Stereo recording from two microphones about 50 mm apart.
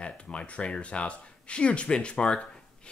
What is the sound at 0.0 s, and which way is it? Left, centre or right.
Speech, left.